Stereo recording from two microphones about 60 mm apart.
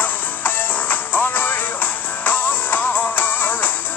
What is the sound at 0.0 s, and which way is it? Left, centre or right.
Music, left.